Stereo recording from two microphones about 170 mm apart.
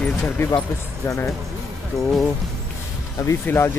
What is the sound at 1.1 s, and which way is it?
Speech, 20° left (ahead or behind).